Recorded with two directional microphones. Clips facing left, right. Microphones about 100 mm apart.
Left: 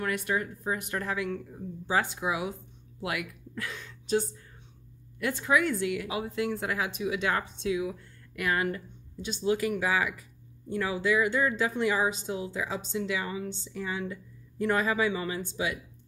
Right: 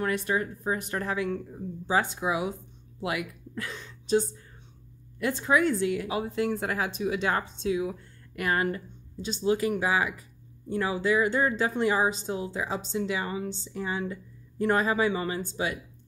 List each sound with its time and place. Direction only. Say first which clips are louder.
0.0 s a woman's voice: right 2 dB; 30° right (ahead or behind)